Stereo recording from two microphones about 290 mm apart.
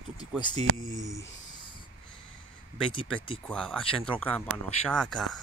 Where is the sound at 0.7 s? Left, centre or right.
Centre.